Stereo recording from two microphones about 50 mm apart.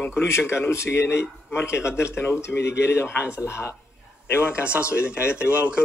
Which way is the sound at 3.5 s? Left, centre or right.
Left.